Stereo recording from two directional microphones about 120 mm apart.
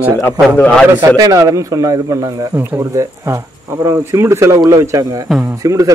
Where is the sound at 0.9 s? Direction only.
30° right (ahead or behind).